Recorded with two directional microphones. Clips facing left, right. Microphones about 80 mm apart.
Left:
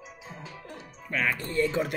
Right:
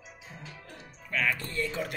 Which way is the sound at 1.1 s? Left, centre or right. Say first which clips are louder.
Left 3 dB; left.